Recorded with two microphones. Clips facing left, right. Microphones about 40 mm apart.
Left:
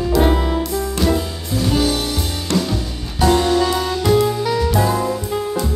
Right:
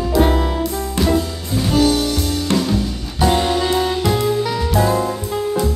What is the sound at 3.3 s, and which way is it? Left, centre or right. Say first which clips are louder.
Music: left 1 dB; centre.